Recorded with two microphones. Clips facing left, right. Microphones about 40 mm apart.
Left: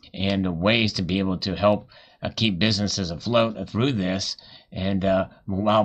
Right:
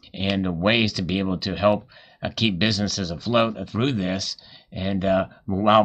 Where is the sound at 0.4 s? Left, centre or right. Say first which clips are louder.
Right 1 dB; centre.